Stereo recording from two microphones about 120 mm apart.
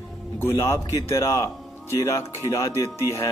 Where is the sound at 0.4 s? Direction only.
20° left (ahead or behind).